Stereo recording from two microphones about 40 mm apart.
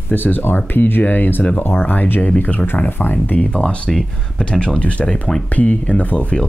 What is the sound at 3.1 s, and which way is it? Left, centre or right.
Speech, left.